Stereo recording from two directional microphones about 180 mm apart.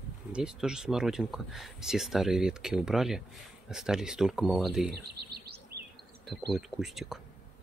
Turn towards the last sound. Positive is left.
turn(degrees=0)  # may be behind; listen again after turning